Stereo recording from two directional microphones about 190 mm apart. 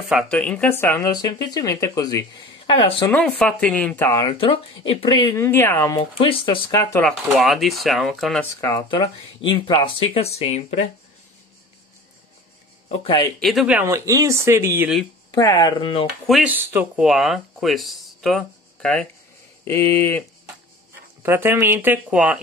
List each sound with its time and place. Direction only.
0.1 s speech: 5° left (ahead or behind); by 3.1 s 25° left (ahead or behind)
3.1 s speech: 5° left (ahead or behind); by 5.4 s 25° left (ahead or behind)
5.4 s speech: 15° left (ahead or behind)
5.9 s speech: 25° left (ahead or behind)
7.1 s speech: centre (ahead or behind)
8.5 s speech: 15° left (ahead or behind); by 10.9 s 35° left (ahead or behind)
12.8 s speech: 30° left (ahead or behind)
13.4 s speech: centre (ahead or behind)
15.3 s speech: 20° left (ahead or behind)
16.3 s speech: 5° right (ahead or behind)
19.6 s speech: 15° left (ahead or behind)
21.2 s speech: 10° right (ahead or behind)